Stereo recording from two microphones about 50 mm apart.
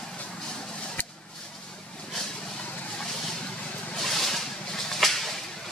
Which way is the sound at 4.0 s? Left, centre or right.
Centre.